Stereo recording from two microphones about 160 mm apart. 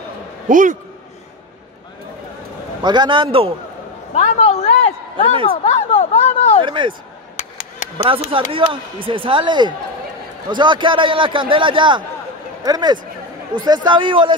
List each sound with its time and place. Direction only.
0.5 s a man's voice: 55° right (ahead or behind)
2.8 s speech: 25° right (ahead or behind)
4.1 s a sound: 45° left (ahead or behind)
5.6 s speech: 40° left (ahead or behind)
6.6 s speech: 30° right (ahead or behind)
8.0 s speech: 35° right (ahead or behind)